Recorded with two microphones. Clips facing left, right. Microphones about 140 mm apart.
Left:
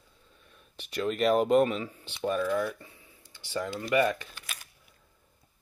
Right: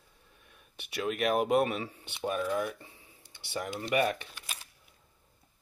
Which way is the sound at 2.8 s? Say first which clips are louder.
Left 1 dB; 25° right (ahead or behind).